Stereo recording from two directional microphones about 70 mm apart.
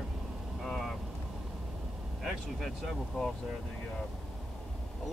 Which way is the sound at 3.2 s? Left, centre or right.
Centre.